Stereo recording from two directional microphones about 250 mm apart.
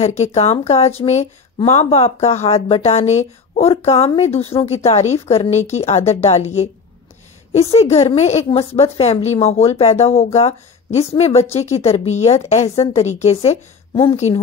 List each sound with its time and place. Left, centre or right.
0.0 s speech: left
7.7 s speech: left